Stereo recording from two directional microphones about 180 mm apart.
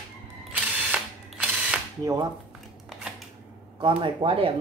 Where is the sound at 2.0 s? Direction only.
20° right (ahead or behind).